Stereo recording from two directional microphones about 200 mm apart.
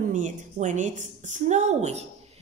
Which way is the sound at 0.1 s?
40° right (ahead or behind).